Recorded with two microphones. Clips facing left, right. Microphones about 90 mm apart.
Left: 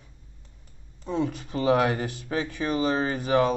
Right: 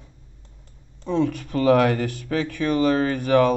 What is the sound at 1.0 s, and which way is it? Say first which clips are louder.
Speech: right 5 dB; 60° right (ahead or behind).